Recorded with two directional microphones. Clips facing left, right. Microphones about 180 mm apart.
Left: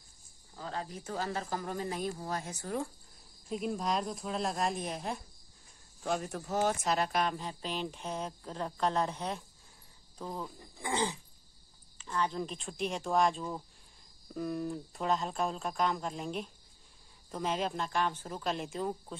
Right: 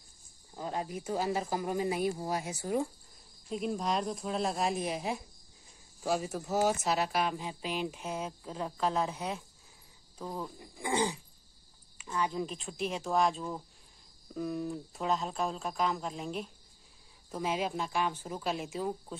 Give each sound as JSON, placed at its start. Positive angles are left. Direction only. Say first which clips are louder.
{"t": 0.6, "sound": "speech", "louder": "right 4 dB", "side_deg": -15}
{"t": 3.4, "sound": "speech", "louder": "right 1 dB", "side_deg": 0}
{"t": 10.6, "sound": "speech", "louder": "right 3 dB", "side_deg": -15}